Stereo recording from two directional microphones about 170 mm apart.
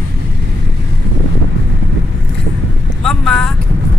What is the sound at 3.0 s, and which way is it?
Speech, 5° left (ahead or behind).